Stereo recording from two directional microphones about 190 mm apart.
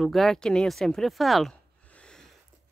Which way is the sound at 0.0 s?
Centre (ahead or behind).